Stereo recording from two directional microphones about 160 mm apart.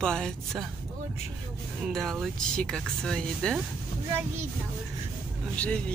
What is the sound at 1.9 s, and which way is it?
Speech, centre (ahead or behind).